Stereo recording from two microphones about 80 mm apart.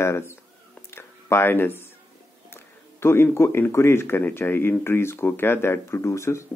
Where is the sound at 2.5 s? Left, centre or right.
Left.